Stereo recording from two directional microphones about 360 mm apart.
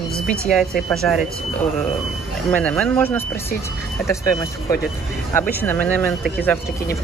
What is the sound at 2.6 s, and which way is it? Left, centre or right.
Speech, centre.